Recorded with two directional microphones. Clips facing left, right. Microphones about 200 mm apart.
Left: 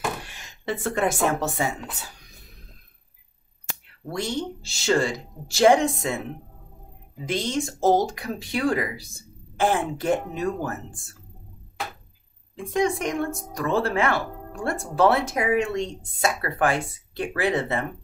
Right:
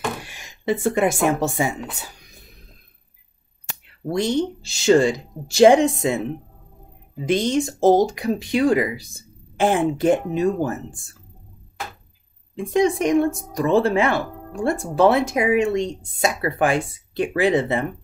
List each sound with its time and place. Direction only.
0.3 s speech: 10° right (ahead or behind)
4.1 s a woman's voice: 20° right (ahead or behind)
7.2 s a woman's voice: 20° right (ahead or behind)
12.5 s a woman's voice: 20° right (ahead or behind)